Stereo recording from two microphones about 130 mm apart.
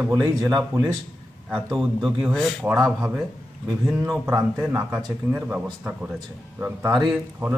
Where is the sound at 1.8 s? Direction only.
Centre (ahead or behind).